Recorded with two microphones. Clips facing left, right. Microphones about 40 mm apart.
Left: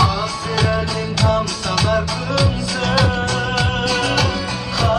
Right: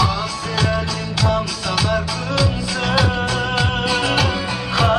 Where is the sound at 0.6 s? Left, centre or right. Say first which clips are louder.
Left 1 dB; centre.